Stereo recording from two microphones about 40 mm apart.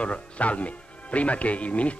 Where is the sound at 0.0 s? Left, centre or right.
Left.